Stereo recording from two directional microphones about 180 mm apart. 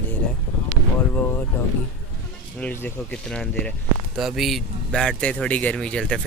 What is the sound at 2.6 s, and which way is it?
A man's voice, 10° left (ahead or behind).